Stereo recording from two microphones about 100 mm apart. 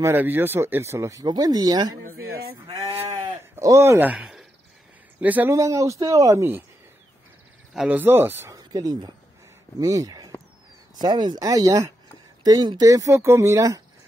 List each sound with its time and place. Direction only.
0.0 s speech: 20° right (ahead or behind); by 2.0 s 40° right (ahead or behind)
3.6 s speech: 30° right (ahead or behind)
4.0 s speech: 10° right (ahead or behind)
5.2 s a man's voice: 15° right (ahead or behind)
5.5 s speech: 30° right (ahead or behind)
7.7 s speech: 10° right (ahead or behind)
8.0 s speech: 20° right (ahead or behind)
8.5 s a sound: 40° right (ahead or behind)
9.8 s speech: 35° right (ahead or behind)